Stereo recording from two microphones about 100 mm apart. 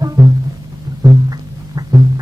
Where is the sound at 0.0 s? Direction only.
40° right (ahead or behind).